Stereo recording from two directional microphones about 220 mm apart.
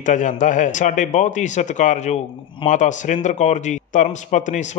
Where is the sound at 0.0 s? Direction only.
35° left (ahead or behind).